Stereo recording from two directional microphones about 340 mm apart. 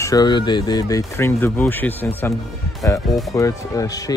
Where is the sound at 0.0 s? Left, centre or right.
Centre.